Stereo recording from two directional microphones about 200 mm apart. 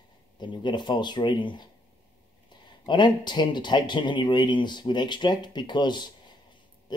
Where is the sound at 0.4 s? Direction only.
25° left (ahead or behind).